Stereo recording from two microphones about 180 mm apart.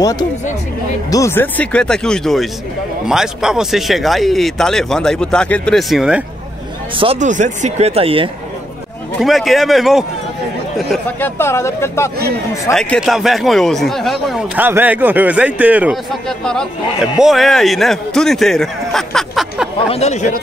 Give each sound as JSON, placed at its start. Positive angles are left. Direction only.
{"t": 0.0, "sound": "speech", "side_deg": 20}
{"t": 7.0, "sound": "speech", "side_deg": -35}
{"t": 9.2, "sound": "speech", "side_deg": 0}
{"t": 11.1, "sound": "speech", "side_deg": 10}
{"t": 12.7, "sound": "speech", "side_deg": 0}
{"t": 19.9, "sound": "speech", "side_deg": 40}